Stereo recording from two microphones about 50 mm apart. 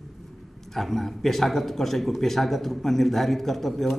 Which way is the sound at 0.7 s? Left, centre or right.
Centre.